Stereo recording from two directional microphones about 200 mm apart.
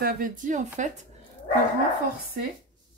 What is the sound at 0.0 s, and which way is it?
Speech, 40° right (ahead or behind).